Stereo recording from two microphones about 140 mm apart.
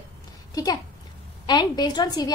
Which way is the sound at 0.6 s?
25° left (ahead or behind).